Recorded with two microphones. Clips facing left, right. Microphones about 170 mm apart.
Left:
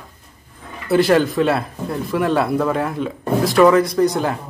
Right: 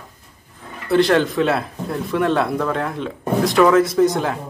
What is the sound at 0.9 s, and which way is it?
Speech, 5° left (ahead or behind).